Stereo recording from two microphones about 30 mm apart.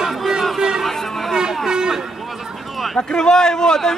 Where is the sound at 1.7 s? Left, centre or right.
Right.